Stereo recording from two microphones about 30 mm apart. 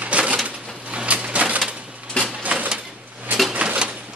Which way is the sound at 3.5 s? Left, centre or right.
Right.